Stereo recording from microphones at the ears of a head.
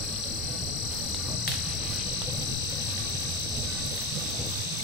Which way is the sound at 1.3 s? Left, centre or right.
Left.